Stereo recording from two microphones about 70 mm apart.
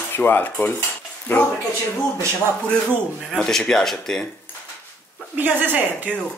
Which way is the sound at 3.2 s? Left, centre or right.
Centre.